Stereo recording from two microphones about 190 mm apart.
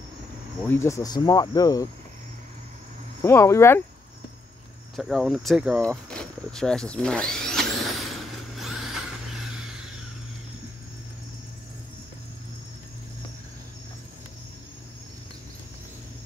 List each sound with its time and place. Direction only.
0.6 s speech: 15° left (ahead or behind)
3.2 s speech: 15° left (ahead or behind)
4.9 s speech: centre (ahead or behind)
8.5 s vehicle: centre (ahead or behind)